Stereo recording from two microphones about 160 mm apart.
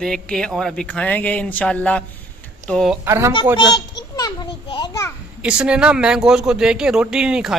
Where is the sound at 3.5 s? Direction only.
30° left (ahead or behind).